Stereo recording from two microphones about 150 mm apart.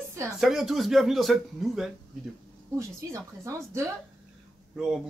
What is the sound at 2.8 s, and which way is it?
Speech, 20° right (ahead or behind).